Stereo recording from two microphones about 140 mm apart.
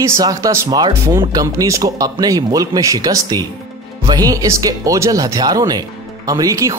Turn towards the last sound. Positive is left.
turn(degrees=-25)  # may be behind; listen again after turning